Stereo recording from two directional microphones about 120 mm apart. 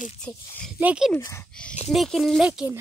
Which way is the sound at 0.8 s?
10° right (ahead or behind).